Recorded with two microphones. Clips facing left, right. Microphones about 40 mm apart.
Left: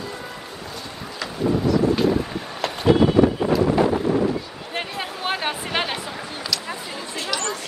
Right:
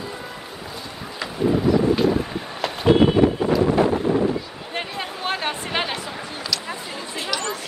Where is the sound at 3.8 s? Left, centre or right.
Centre.